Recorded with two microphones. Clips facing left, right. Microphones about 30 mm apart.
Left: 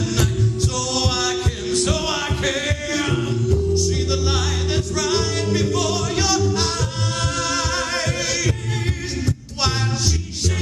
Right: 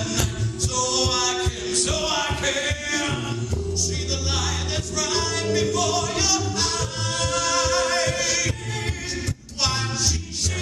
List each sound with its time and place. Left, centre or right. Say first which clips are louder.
0.7 s music: right 2 dB; centre
3.9 s music: left 5 dB; centre
9.6 s music: left 1 dB; centre